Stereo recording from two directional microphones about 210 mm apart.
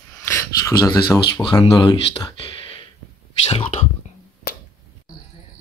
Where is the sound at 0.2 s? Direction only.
10° left (ahead or behind); by 3.8 s 30° left (ahead or behind).